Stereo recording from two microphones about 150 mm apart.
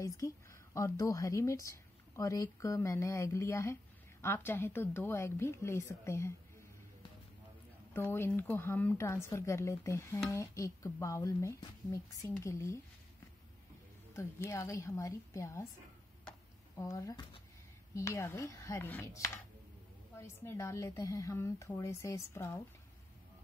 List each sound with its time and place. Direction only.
0.0 s a woman's voice: 20° left (ahead or behind)
7.9 s a woman's voice: 15° left (ahead or behind)
14.1 s a woman's voice: 20° left (ahead or behind)
16.3 s a sound: 25° left (ahead or behind)
17.9 s a woman's voice: 20° left (ahead or behind)